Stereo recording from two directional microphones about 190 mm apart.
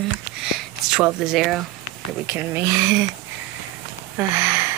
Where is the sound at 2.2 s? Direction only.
10° right (ahead or behind).